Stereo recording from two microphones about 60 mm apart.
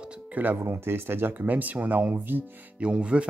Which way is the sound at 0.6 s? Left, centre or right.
Right.